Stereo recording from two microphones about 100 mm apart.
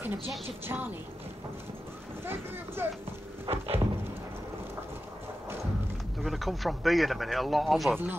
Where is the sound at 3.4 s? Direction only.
75° right (ahead or behind).